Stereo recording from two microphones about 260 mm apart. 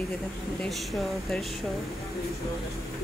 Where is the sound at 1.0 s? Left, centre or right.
Centre.